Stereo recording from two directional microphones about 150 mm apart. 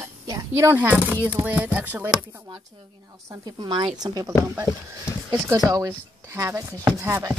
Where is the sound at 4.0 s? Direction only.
25° right (ahead or behind).